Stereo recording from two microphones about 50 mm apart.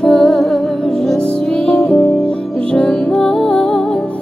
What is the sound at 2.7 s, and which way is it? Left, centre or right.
Music, left.